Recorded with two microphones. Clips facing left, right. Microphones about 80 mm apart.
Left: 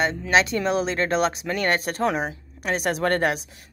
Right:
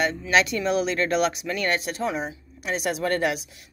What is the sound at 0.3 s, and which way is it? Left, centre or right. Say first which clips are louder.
Speech: left 1 dB; left.